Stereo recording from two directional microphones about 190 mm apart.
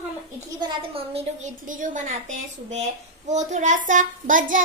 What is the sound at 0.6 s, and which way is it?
A child's voice, 30° right (ahead or behind).